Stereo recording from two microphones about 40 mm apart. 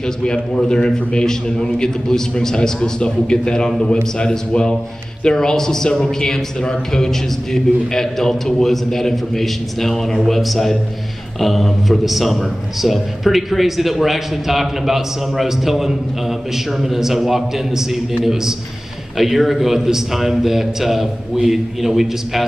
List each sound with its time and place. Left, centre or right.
0.2 s a man's voice: centre
2.5 s a man's voice: left; by 22.4 s centre